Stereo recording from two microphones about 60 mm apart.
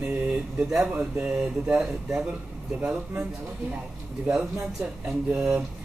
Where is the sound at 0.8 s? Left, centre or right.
Right.